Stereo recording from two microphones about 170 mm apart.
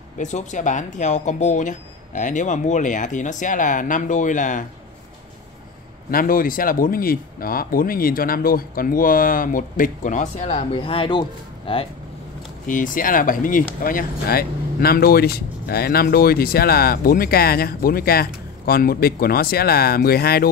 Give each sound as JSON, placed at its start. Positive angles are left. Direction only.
{"t": 0.2, "sound": "speech", "side_deg": 45}
{"t": 6.0, "sound": "speech", "side_deg": 60}
{"t": 12.6, "sound": "speech", "side_deg": 50}